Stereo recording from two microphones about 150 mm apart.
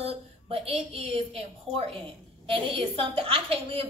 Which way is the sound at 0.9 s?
40° right (ahead or behind).